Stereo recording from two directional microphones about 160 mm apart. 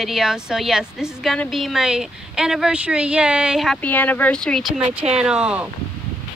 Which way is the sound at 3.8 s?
10° left (ahead or behind).